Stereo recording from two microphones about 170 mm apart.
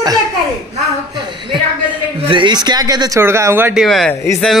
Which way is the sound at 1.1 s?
25° right (ahead or behind).